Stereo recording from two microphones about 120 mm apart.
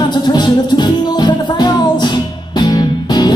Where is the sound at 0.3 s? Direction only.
40° left (ahead or behind).